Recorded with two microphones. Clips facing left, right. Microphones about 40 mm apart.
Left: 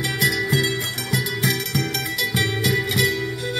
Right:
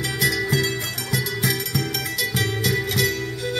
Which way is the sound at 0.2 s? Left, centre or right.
Centre.